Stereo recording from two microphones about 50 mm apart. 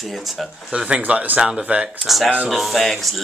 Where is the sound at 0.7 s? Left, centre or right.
Right.